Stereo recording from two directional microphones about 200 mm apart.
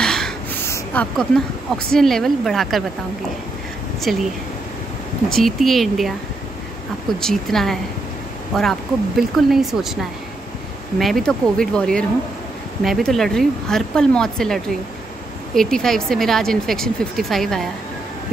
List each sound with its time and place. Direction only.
0.0 s a sound: 5° left (ahead or behind)
1.9 s speech: centre (ahead or behind)
4.0 s speech: centre (ahead or behind)
5.3 s speech: centre (ahead or behind)
11.0 s speech: centre (ahead or behind)